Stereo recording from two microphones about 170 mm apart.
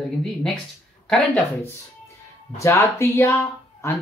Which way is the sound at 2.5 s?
15° left (ahead or behind).